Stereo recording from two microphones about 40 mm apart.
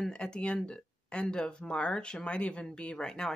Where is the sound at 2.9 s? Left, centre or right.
Centre.